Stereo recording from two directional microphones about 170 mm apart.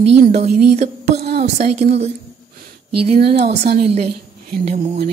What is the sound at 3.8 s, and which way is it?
Speech, 40° right (ahead or behind).